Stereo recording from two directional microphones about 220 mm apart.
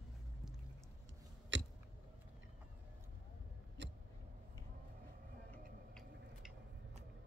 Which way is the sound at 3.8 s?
50° right (ahead or behind).